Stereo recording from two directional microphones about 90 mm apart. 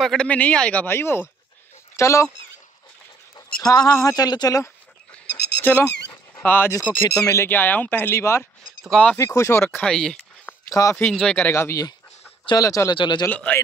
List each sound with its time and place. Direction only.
0.0 s speech: centre (ahead or behind)
0.3 s speech: 15° left (ahead or behind)
0.8 s speech: 25° left (ahead or behind)
3.6 s speech: 40° left (ahead or behind)
5.1 s a sound: 20° left (ahead or behind)
6.3 s speech: 20° left (ahead or behind)
7.1 s speech: 35° left (ahead or behind)
7.4 s speech: 20° left (ahead or behind)
9.8 s speech: 10° left (ahead or behind)
10.7 s speech: 40° left (ahead or behind)
11.0 s speech: 10° left (ahead or behind)
11.4 s speech: 30° left (ahead or behind)
12.9 s a man's voice: 60° left (ahead or behind)
13.3 s speech: 20° left (ahead or behind)